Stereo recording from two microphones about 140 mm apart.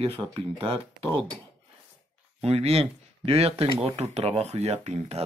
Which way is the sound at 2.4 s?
45° right (ahead or behind).